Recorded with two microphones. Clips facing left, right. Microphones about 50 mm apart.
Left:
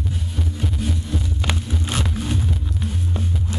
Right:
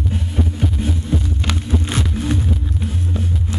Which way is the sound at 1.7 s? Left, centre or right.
Centre.